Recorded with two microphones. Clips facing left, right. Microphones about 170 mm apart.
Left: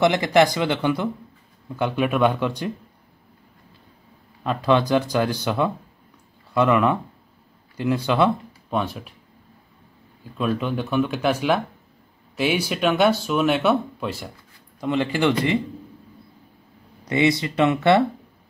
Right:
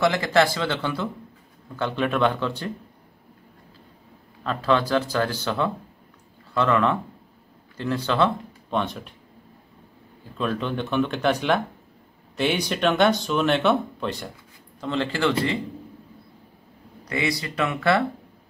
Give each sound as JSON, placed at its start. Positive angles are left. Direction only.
{"t": 0.0, "sound": "speech", "side_deg": 20}
{"t": 4.4, "sound": "speech", "side_deg": 15}
{"t": 10.3, "sound": "speech", "side_deg": 5}
{"t": 17.0, "sound": "speech", "side_deg": 20}